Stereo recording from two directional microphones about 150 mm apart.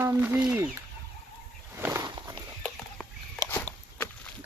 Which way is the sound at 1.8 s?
15° right (ahead or behind).